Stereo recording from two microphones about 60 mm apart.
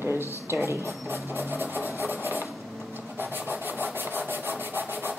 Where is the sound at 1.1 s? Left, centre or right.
Right.